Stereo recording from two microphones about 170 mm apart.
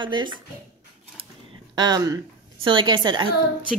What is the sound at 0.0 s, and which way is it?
Speech, 30° right (ahead or behind).